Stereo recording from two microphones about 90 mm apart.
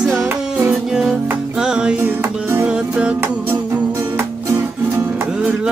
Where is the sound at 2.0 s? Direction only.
25° right (ahead or behind).